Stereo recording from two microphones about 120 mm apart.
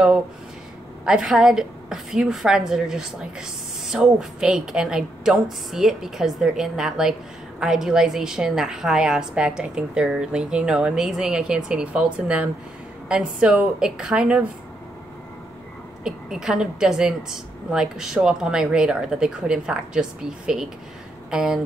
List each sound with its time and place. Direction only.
1.0 s a woman's voice: 5° right (ahead or behind)
16.0 s a woman's voice: 5° right (ahead or behind)